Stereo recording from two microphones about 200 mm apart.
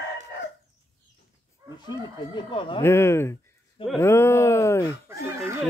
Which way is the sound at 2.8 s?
10° left (ahead or behind).